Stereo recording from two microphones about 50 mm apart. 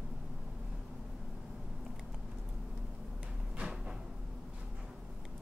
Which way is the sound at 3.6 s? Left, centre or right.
Centre.